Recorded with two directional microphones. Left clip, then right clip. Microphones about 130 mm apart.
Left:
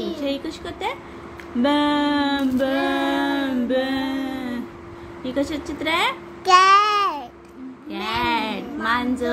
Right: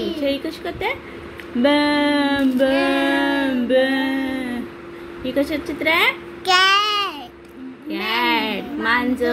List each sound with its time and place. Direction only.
0.0 s a woman's voice: 15° right (ahead or behind)
1.6 s female singing: 15° right (ahead or behind)
5.2 s speech: 20° right (ahead or behind)
6.4 s child singing: 55° left (ahead or behind)
7.9 s speech: 15° right (ahead or behind)